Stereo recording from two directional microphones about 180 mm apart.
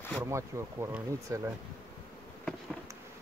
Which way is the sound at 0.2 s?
15° right (ahead or behind).